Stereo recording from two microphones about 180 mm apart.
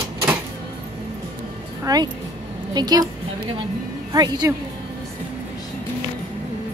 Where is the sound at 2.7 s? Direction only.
20° right (ahead or behind).